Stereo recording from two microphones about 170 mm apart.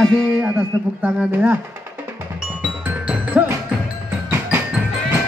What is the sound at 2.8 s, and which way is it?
Music, 10° right (ahead or behind).